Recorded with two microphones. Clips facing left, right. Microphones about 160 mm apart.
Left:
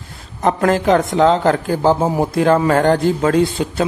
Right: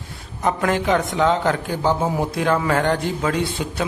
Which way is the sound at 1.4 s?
40° left (ahead or behind).